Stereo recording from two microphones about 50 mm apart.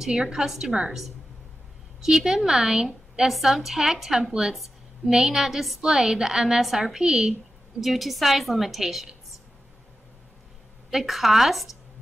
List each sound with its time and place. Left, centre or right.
0.1 s a woman's voice: centre
7.8 s a woman's voice: centre
10.9 s a woman's voice: centre